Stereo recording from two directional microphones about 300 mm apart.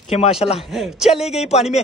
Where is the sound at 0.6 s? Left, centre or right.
Centre.